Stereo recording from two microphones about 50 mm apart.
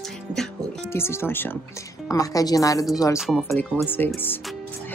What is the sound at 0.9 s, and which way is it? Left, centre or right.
Speech, left.